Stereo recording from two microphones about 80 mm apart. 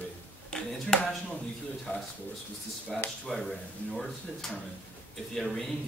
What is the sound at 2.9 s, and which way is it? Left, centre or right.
A man's voice, centre.